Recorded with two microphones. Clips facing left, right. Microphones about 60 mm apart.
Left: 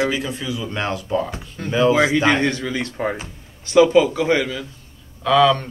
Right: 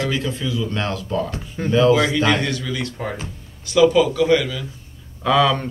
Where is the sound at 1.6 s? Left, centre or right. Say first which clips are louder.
Right 5 dB; centre.